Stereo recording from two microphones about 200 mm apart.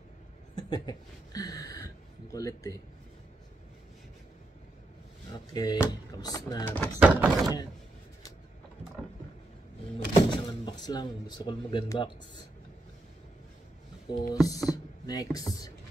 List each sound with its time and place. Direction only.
0.6 s speech: 20° left (ahead or behind)
5.3 s speech: 20° left (ahead or behind)
6.6 s speech: 10° left (ahead or behind)
7.0 s speech: 5° right (ahead or behind)
9.9 s speech: 25° left (ahead or behind)
14.1 s speech: 20° left (ahead or behind)